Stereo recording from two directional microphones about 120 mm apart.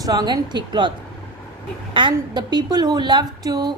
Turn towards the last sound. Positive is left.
turn(degrees=-35)  # may be behind; listen again after turning